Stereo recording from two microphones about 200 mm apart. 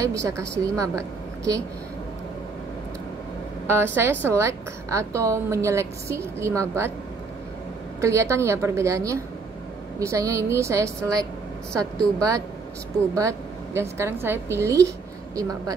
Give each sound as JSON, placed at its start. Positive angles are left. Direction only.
{"t": 0.0, "sound": "a woman's voice", "side_deg": -15}
{"t": 3.6, "sound": "a woman's voice", "side_deg": -10}
{"t": 8.0, "sound": "a woman's voice", "side_deg": -15}